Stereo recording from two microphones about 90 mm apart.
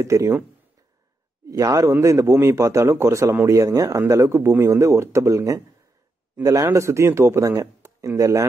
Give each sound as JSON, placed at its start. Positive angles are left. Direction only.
{"t": 0.0, "sound": "speech", "side_deg": -35}
{"t": 1.5, "sound": "speech", "side_deg": -40}